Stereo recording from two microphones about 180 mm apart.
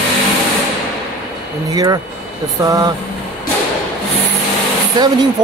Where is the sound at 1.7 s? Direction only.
20° right (ahead or behind).